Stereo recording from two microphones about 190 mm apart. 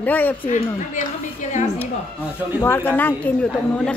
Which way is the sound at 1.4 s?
40° left (ahead or behind).